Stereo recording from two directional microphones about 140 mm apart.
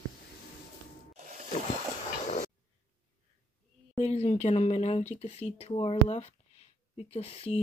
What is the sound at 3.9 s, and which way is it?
Speech, 50° left (ahead or behind).